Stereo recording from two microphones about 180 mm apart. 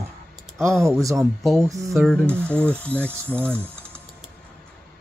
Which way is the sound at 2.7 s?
10° left (ahead or behind).